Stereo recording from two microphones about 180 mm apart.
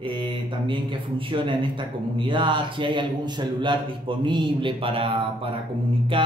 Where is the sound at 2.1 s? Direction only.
25° right (ahead or behind).